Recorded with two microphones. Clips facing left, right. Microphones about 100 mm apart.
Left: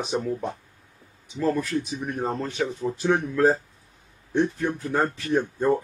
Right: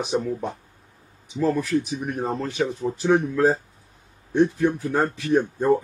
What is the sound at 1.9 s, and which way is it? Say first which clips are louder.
Speech: right 1 dB; 15° right (ahead or behind).